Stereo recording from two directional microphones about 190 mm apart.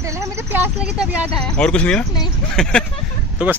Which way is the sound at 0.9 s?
5° right (ahead or behind).